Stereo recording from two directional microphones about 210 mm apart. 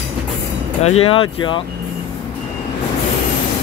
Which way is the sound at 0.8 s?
30° left (ahead or behind).